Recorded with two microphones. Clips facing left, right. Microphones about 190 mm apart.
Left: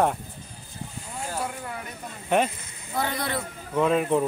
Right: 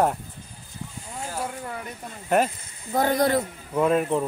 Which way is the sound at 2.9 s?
45° right (ahead or behind).